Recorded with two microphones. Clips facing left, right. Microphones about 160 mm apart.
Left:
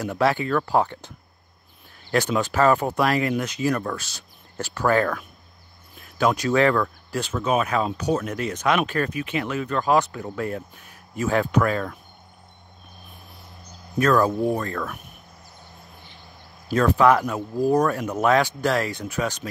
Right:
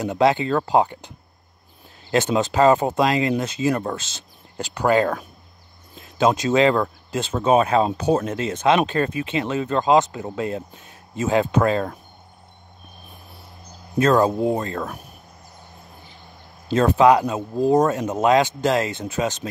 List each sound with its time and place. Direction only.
0.0 s speech: 20° right (ahead or behind)
13.9 s speech: 20° right (ahead or behind)
16.6 s speech: 25° right (ahead or behind)